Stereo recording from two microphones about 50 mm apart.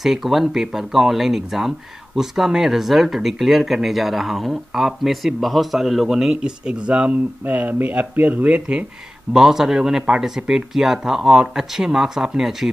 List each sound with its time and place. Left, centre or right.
0.0 s speech: centre
6.3 s speech: right
7.4 s speech: right
9.3 s speech: centre